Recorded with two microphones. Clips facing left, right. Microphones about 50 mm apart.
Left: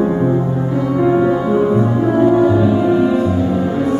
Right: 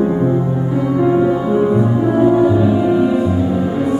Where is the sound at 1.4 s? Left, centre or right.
Centre.